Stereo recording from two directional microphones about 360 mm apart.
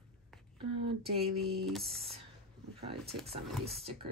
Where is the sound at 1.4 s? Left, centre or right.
Centre.